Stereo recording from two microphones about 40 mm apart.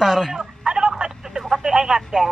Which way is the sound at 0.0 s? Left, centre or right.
Centre.